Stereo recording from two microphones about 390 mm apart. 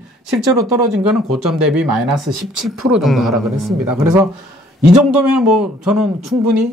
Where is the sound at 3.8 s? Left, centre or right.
Right.